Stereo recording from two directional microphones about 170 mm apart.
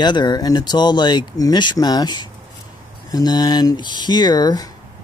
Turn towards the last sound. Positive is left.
turn(degrees=25)  # may be behind; listen again after turning